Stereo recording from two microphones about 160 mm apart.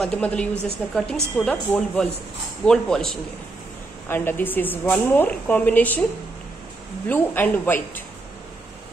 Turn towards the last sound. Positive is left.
turn(degrees=10)  # may be behind; listen again after turning